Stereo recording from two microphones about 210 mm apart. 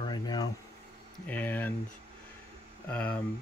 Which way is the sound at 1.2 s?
10° left (ahead or behind).